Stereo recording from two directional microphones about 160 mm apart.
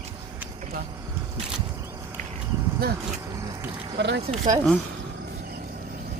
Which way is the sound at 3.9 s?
90° right.